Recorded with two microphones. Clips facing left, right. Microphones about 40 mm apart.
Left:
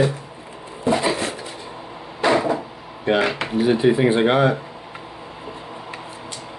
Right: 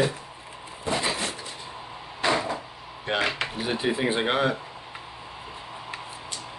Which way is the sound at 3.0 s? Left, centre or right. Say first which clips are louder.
Left 7 dB; centre.